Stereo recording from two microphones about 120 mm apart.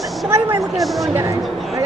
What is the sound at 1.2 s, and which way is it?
Speech, 25° right (ahead or behind).